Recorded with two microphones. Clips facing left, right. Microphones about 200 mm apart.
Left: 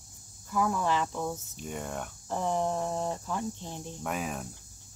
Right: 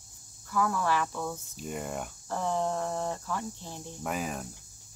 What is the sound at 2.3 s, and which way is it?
Speech, 15° left (ahead or behind).